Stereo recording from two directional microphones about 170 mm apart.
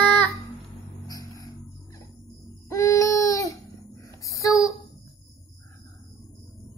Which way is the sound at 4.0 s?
20° left (ahead or behind).